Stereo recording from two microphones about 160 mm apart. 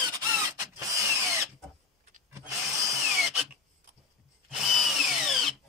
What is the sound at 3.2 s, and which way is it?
Drill, centre (ahead or behind).